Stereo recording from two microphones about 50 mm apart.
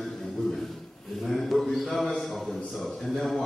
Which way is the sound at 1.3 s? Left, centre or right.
Centre.